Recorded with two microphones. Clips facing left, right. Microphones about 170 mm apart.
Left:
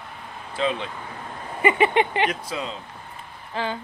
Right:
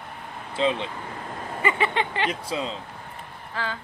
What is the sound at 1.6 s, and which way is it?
Speech, 15° left (ahead or behind).